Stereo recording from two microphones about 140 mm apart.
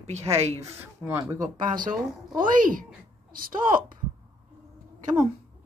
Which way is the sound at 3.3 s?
90° right.